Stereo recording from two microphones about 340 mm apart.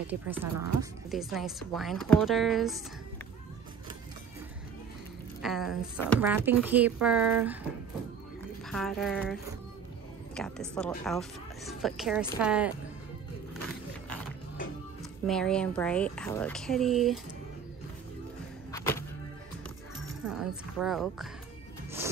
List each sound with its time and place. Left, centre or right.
0.0 s speech: centre
5.4 s speech: centre
8.6 s speech: centre
15.2 s speech: centre
18.7 s music: centre
20.2 s a woman's voice: centre